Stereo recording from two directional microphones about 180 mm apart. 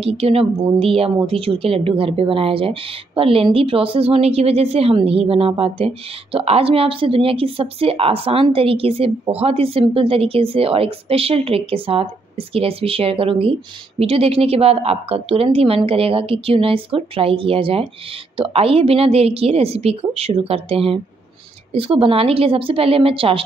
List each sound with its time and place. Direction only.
0.0 s a woman's voice: 35° right (ahead or behind)